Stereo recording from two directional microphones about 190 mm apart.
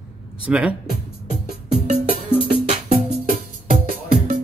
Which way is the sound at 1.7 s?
35° right (ahead or behind).